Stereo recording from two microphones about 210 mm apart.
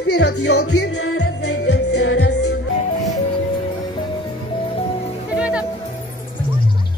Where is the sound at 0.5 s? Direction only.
90° left.